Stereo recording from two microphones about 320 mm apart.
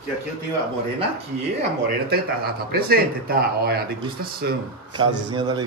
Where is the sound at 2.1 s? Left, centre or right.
Right.